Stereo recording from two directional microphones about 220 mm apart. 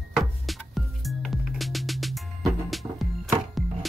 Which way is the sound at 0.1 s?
Centre (ahead or behind).